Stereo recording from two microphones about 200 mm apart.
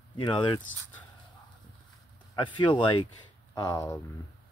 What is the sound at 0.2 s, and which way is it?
Speech, 25° left (ahead or behind).